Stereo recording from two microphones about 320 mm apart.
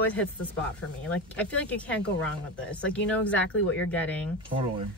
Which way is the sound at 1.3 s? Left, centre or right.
Centre.